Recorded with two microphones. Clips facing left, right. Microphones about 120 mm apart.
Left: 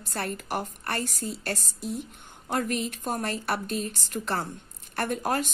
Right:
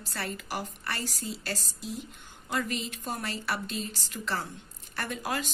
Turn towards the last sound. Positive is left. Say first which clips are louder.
# left 6 dB
turn(degrees=55)  # may be behind; listen again after turning